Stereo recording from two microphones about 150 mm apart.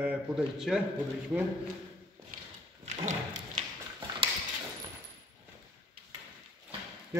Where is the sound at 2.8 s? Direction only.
50° right (ahead or behind).